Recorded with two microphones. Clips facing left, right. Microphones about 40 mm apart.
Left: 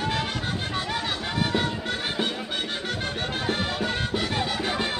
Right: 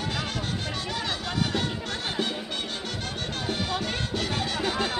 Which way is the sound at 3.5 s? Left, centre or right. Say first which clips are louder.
Left 1 dB; centre.